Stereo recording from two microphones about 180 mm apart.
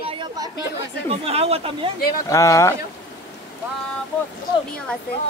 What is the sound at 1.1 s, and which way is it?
Speech, 35° right (ahead or behind).